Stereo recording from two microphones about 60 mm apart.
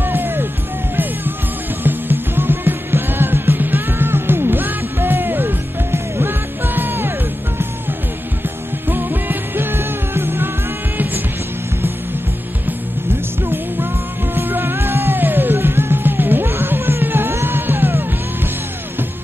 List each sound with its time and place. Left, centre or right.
0.0 s music: right
1.8 s music: right
8.8 s music: right
14.3 s music: right